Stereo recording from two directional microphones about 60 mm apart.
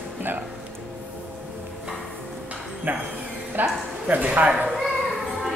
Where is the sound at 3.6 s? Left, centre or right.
Right.